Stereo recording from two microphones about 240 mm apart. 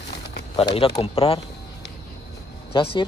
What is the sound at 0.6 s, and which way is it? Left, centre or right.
Speech, left.